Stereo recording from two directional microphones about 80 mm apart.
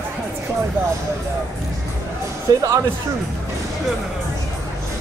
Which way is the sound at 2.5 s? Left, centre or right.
Right.